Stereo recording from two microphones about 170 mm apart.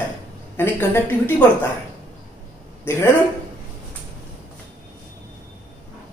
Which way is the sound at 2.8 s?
15° left (ahead or behind).